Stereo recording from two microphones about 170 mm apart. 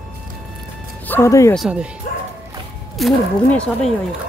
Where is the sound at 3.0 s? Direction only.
5° left (ahead or behind).